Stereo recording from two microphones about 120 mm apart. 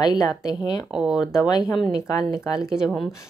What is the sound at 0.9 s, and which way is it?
Speech, 5° right (ahead or behind).